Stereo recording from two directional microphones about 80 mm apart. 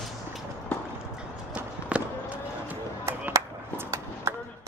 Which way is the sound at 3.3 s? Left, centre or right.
Right.